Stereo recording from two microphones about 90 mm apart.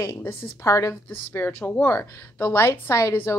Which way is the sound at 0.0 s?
25° left (ahead or behind).